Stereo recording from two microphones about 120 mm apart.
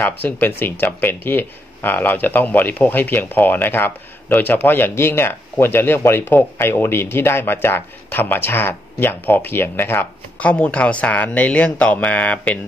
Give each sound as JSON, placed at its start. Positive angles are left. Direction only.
{"t": 0.0, "sound": "speech", "side_deg": 15}